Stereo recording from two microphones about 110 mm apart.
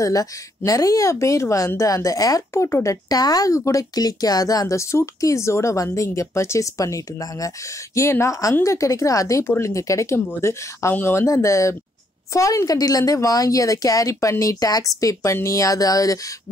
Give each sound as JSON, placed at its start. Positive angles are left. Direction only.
{"t": 0.0, "sound": "speech", "side_deg": 30}